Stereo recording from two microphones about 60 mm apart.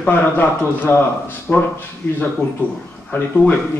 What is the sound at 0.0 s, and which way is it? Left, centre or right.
Speech, left.